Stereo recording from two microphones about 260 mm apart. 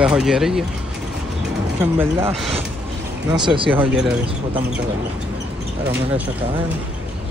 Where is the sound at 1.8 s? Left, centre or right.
Centre.